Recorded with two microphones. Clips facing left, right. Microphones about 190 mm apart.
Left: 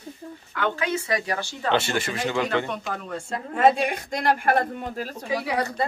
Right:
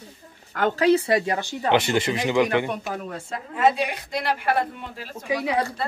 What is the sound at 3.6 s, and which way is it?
A man's voice, 50° left (ahead or behind).